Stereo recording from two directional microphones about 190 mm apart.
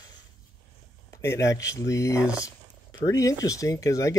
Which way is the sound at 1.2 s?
15° left (ahead or behind).